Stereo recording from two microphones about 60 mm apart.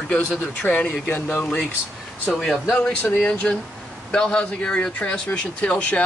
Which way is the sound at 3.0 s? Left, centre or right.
Left.